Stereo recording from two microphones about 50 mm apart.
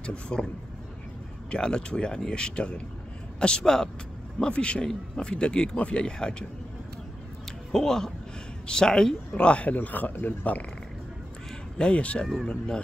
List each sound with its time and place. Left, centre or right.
0.0 s speech: centre
1.5 s speech: centre
7.7 s speech: centre
9.3 s speech: left
9.8 s speech: left
11.8 s speech: left